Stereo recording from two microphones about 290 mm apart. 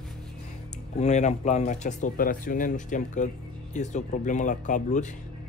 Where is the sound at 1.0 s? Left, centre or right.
Left.